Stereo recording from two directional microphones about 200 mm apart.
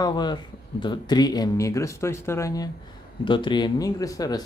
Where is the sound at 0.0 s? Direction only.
20° left (ahead or behind).